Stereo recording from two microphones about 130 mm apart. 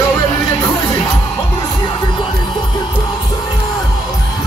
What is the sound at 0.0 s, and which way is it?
Music, 25° left (ahead or behind).